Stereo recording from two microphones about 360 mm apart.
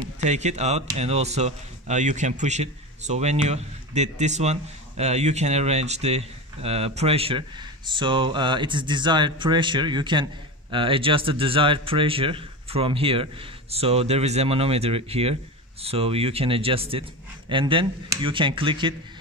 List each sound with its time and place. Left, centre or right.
0.2 s speech: centre